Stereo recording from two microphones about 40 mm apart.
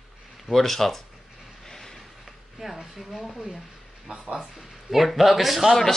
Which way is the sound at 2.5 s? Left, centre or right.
Centre.